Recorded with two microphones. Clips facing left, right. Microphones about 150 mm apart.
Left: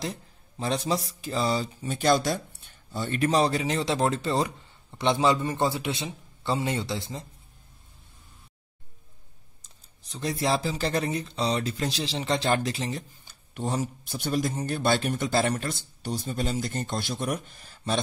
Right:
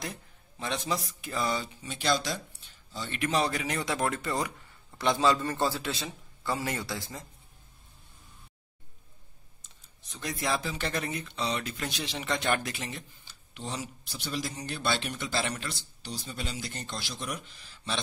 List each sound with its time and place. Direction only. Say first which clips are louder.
0.0 s speech: left 5 dB; 35° left (ahead or behind)
10.0 s speech: left 5 dB; 35° left (ahead or behind)
13.2 s speech: left 9 dB; 45° left (ahead or behind)